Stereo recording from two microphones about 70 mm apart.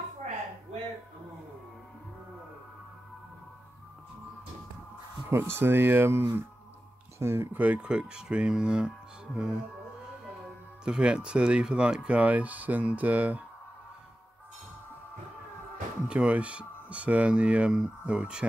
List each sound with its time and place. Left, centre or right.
5.3 s speech: right
7.5 s speech: right
10.8 s speech: centre
16.1 s speech: centre